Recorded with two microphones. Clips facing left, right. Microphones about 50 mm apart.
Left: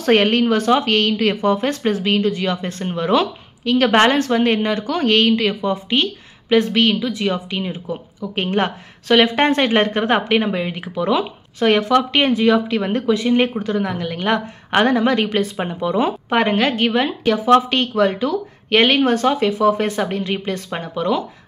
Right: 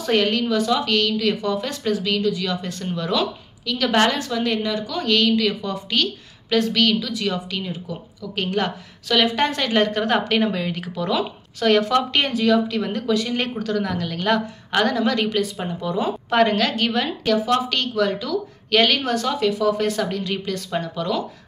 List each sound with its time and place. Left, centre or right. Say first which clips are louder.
0.0 s a woman's voice: left 5 dB; left
11.9 s a woman's voice: left 4 dB; centre; by 16.2 s left
16.3 s a woman's voice: right 2 dB; left